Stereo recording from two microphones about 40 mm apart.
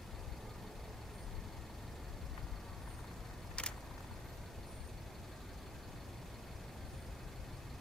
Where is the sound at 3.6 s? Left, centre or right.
Left.